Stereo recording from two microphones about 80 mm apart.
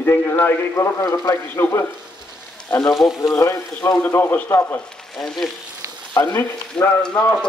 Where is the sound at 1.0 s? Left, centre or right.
Left.